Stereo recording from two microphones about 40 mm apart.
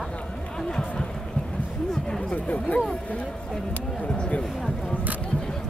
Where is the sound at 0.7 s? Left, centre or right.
Left.